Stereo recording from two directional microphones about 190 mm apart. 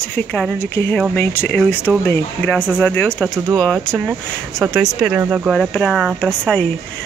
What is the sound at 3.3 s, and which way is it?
Speech, 15° right (ahead or behind).